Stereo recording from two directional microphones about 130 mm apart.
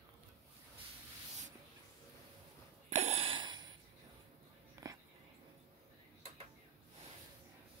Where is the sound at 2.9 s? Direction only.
55° right (ahead or behind); by 3.6 s 35° right (ahead or behind).